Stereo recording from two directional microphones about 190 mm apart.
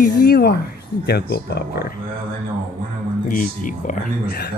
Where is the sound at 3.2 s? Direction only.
45° left (ahead or behind).